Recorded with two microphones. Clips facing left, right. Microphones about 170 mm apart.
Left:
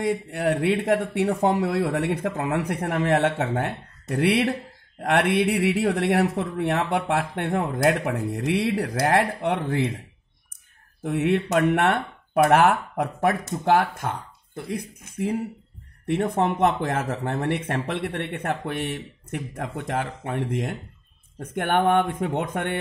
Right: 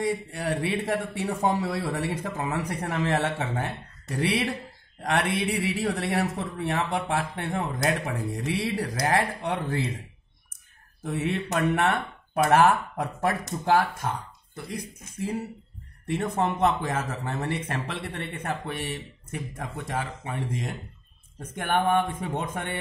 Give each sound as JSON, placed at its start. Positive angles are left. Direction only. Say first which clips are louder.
{"t": 0.0, "sound": "speech", "louder": "left 4 dB", "side_deg": 60}
{"t": 11.0, "sound": "speech", "louder": "left 6 dB", "side_deg": 60}